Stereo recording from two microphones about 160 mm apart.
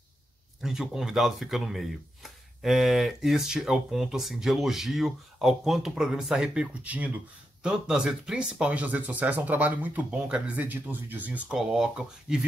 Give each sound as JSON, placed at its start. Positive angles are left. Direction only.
{"t": 0.6, "sound": "speech", "side_deg": 0}